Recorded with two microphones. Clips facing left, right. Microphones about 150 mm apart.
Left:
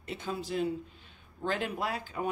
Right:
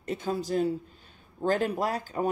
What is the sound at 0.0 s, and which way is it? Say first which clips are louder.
Speech: right 6 dB; 40° right (ahead or behind).